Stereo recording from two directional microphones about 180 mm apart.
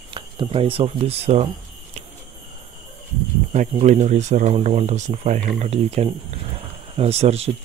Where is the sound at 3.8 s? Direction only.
40° right (ahead or behind).